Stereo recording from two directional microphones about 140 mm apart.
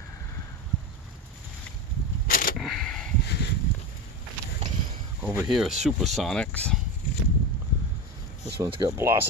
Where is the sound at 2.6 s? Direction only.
5° left (ahead or behind).